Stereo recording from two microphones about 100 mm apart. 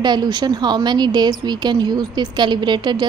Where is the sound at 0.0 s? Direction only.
45° right (ahead or behind).